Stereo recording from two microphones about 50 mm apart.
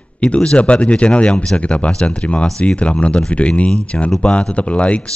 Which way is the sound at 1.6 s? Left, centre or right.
Left.